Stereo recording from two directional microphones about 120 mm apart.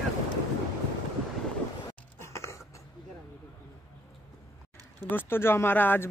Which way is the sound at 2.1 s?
25° left (ahead or behind).